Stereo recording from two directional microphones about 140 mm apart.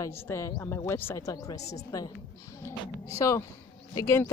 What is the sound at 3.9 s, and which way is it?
Speech, 20° left (ahead or behind).